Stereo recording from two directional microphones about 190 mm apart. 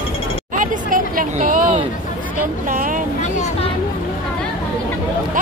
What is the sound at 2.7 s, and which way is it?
Vehicle, 45° right (ahead or behind).